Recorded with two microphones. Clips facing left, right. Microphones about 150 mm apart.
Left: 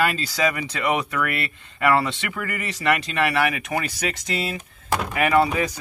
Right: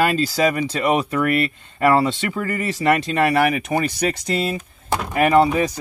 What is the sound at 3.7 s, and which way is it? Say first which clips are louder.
Speech: right 5 dB; 10° right (ahead or behind).